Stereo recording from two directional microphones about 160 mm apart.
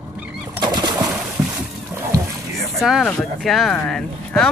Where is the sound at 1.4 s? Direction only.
15° right (ahead or behind).